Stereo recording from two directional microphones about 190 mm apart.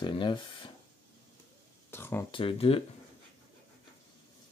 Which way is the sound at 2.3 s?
25° left (ahead or behind).